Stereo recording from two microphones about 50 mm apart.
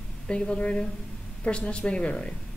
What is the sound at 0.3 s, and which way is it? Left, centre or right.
Speech, left.